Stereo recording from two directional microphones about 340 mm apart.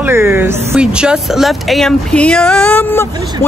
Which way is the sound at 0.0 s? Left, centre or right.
Centre.